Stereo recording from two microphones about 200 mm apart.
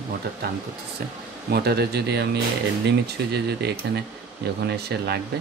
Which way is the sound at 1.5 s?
55° right (ahead or behind).